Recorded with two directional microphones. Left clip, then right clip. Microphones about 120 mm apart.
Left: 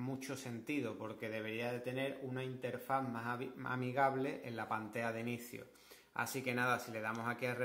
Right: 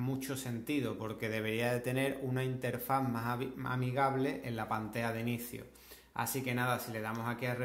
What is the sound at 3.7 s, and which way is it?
Speech, 20° left (ahead or behind).